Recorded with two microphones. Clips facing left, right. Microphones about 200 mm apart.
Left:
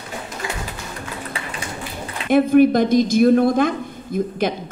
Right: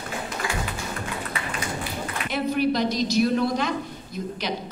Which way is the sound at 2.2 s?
50° left (ahead or behind).